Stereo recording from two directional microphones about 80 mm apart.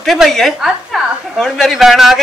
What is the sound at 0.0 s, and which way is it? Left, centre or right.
A man's voice, centre.